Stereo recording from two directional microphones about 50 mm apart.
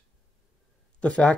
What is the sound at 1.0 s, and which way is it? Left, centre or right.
Speech, left.